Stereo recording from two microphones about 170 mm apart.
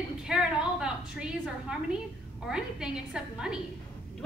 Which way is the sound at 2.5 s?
5° right (ahead or behind).